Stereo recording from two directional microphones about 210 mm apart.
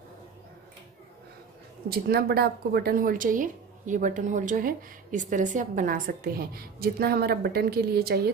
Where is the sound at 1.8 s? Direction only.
50° right (ahead or behind).